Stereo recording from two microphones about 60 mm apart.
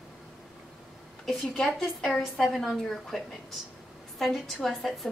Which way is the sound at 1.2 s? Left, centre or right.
Centre.